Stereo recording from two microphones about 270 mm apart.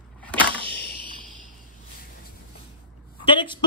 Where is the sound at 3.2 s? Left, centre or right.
Centre.